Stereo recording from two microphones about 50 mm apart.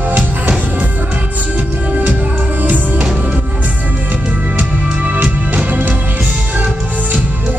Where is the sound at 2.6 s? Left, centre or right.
Right.